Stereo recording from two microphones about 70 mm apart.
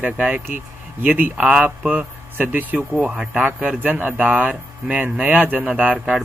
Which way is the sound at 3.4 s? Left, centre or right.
Right.